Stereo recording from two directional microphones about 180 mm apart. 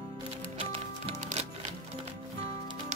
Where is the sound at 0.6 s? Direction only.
35° right (ahead or behind).